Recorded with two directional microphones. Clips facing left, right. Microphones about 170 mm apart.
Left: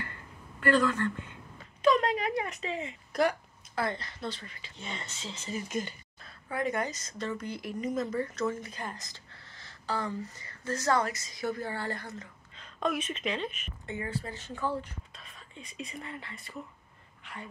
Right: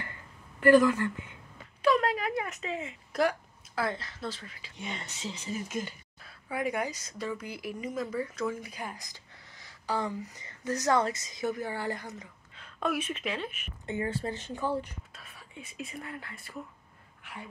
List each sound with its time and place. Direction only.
0.6 s a woman's voice: 15° right (ahead or behind)
13.8 s speech: 25° right (ahead or behind); by 17.5 s 5° right (ahead or behind)